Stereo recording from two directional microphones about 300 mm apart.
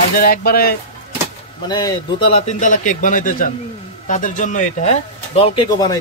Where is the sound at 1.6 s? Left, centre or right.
Centre.